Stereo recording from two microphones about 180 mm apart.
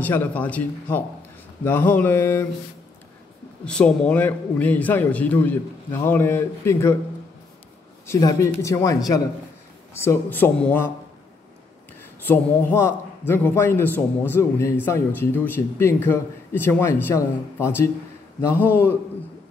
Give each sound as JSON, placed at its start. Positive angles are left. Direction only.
{"t": 0.0, "sound": "a man's voice", "side_deg": 10}
{"t": 3.6, "sound": "a man's voice", "side_deg": 5}
{"t": 8.1, "sound": "a man's voice", "side_deg": 20}
{"t": 12.3, "sound": "a man's voice", "side_deg": 10}